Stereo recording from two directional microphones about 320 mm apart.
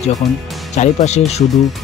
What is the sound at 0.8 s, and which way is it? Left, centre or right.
Speech, left.